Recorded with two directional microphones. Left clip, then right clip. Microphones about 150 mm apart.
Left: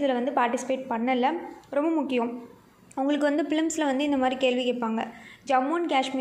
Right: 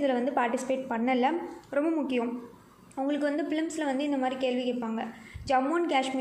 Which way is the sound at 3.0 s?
25° left (ahead or behind).